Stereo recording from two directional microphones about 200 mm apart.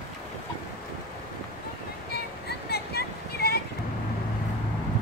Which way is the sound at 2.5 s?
55° left (ahead or behind).